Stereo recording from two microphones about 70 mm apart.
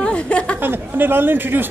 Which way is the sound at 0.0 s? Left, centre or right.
Centre.